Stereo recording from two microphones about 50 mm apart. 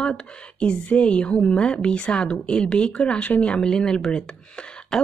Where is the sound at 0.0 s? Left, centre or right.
Centre.